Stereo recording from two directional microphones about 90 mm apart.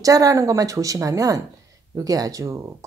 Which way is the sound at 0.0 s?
40° right (ahead or behind).